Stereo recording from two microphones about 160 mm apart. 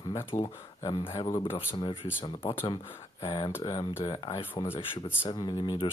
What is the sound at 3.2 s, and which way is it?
Speech, 30° left (ahead or behind).